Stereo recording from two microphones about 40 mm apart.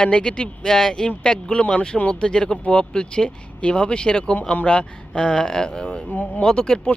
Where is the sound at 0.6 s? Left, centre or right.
Centre.